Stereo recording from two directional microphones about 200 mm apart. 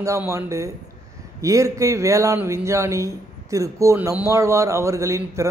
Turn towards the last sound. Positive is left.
turn(degrees=-15)  # may be behind; listen again after turning